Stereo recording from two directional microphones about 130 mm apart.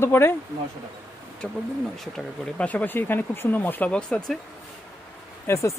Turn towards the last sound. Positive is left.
turn(degrees=20)  # may be behind; listen again after turning